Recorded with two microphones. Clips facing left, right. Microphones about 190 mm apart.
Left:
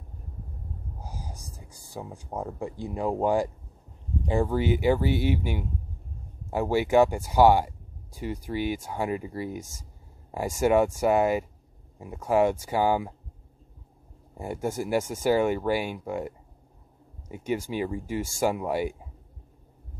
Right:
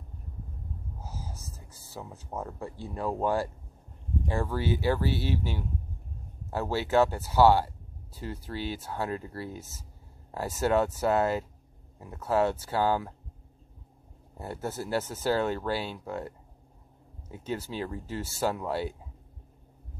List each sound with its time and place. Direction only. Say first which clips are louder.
1.0 s speech: left 1 dB; 15° left (ahead or behind)
14.3 s speech: left 5 dB; 10° left (ahead or behind)